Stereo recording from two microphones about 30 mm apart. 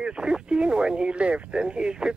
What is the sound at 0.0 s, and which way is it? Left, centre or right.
Speech, right.